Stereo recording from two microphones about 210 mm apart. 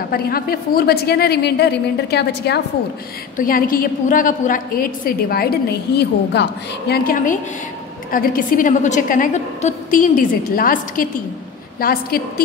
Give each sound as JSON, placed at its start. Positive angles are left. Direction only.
{"t": 0.1, "sound": "a woman's voice", "side_deg": 45}
{"t": 3.3, "sound": "a woman's voice", "side_deg": 40}
{"t": 6.9, "sound": "a woman's voice", "side_deg": 40}